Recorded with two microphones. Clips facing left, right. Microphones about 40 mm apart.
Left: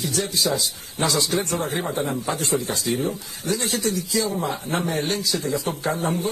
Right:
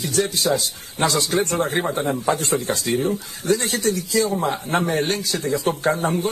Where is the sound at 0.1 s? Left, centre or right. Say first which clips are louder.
Right 5 dB; right.